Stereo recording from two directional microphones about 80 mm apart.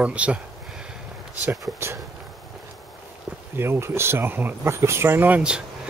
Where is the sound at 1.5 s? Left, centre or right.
Right.